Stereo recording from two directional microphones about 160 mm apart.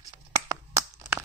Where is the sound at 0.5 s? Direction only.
15° right (ahead or behind).